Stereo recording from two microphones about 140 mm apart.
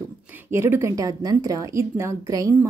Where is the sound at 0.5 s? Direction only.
20° right (ahead or behind).